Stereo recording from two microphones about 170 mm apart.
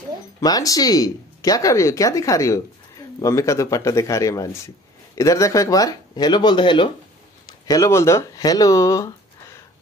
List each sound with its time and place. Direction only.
0.4 s speech: 20° left (ahead or behind)